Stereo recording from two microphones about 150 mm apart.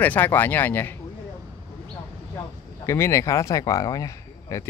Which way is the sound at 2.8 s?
20° left (ahead or behind).